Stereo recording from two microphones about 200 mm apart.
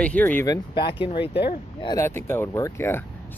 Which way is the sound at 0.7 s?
25° left (ahead or behind).